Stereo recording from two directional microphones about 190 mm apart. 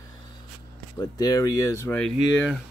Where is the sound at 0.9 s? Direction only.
20° left (ahead or behind).